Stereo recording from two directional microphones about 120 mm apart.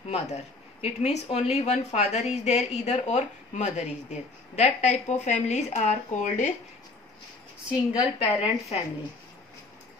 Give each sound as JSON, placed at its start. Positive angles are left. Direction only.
{"t": 0.1, "sound": "a woman's voice", "side_deg": 65}
{"t": 8.2, "sound": "speech", "side_deg": 55}